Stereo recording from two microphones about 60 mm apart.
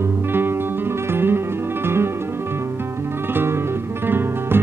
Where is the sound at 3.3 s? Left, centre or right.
Right.